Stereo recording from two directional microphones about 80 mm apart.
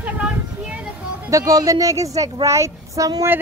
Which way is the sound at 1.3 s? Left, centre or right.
Right.